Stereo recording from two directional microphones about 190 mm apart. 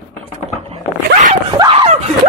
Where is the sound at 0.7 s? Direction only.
40° right (ahead or behind).